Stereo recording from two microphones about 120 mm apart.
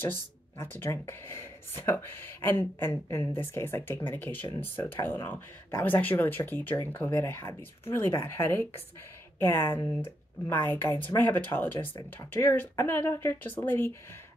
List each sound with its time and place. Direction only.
0.0 s speech: 15° left (ahead or behind)